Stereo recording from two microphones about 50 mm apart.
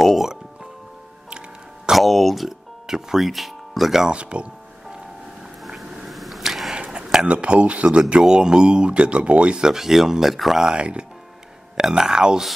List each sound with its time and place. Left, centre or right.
0.0 s speech: centre
1.9 s speech: centre
4.1 s speech: right
6.0 s a sound: centre
6.7 s a sound: centre
7.2 s speech: right
9.6 s speech: centre
10.6 s speech: centre